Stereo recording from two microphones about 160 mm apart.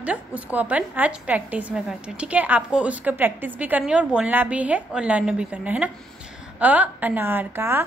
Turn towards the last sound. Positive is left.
turn(degrees=-15)  # may be behind; listen again after turning